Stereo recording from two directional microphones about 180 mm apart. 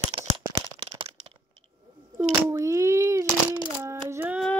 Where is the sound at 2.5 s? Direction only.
15° right (ahead or behind).